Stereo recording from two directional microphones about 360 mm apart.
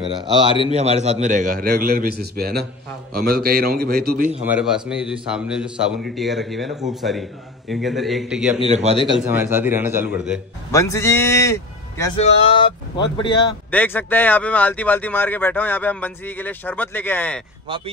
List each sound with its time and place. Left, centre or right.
0.7 s a man's voice: centre
4.4 s speech: centre
8.6 s a man's voice: centre
9.1 s speech: centre
10.7 s speech: centre